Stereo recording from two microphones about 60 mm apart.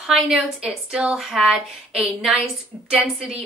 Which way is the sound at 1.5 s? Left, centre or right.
Centre.